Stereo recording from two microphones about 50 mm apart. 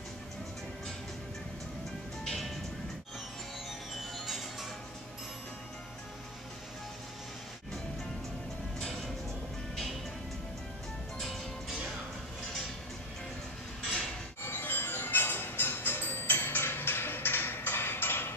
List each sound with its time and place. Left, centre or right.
2.2 s music: centre
4.0 s music: centre
8.7 s music: centre
11.1 s music: centre
14.4 s music: left